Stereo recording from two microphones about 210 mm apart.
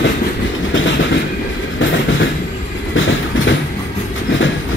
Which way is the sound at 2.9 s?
65° left (ahead or behind).